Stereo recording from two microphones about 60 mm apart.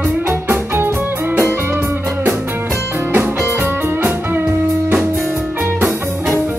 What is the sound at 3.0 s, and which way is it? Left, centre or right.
Music, right.